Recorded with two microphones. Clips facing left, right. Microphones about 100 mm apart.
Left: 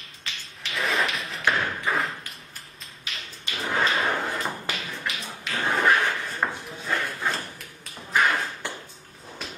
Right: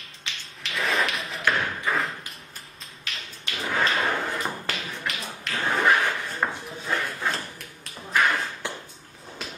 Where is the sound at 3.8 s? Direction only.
Centre (ahead or behind).